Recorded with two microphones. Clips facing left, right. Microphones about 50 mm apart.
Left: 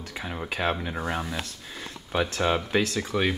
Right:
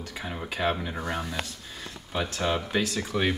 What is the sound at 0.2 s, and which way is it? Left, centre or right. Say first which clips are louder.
Speech: even; centre.